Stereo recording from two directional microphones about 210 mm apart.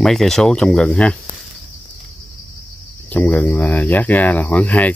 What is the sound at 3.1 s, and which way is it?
Speech, 10° left (ahead or behind).